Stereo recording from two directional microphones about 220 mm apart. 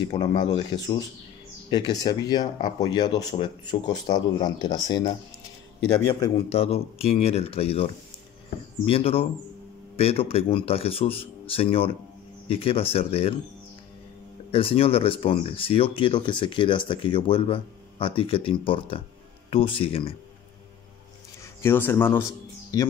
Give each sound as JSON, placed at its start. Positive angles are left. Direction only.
{"t": 0.0, "sound": "speech", "side_deg": 20}
{"t": 14.5, "sound": "speech", "side_deg": 25}
{"t": 21.5, "sound": "a man's voice", "side_deg": 10}